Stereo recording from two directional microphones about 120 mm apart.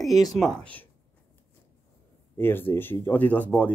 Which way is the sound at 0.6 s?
10° left (ahead or behind).